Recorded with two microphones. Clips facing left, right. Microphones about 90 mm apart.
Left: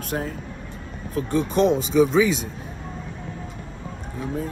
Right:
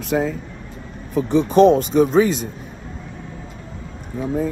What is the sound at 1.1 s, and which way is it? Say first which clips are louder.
Speech: right 5 dB; 70° right (ahead or behind).